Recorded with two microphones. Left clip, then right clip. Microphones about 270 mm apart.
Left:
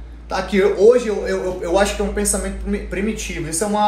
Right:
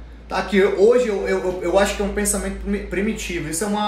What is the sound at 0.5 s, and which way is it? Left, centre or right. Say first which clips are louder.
Speech: left 2 dB; centre.